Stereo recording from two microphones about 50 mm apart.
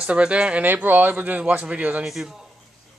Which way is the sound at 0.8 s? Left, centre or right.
Right.